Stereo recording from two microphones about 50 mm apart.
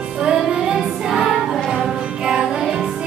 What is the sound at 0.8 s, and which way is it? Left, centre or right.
Music, centre.